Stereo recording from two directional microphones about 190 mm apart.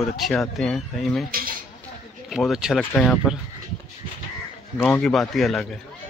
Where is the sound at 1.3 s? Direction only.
50° right (ahead or behind).